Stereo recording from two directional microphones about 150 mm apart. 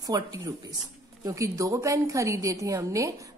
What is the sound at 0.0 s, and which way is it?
A woman's voice, 25° right (ahead or behind).